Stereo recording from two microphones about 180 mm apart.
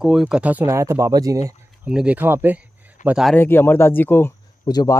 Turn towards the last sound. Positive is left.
turn(degrees=20)  # may be behind; listen again after turning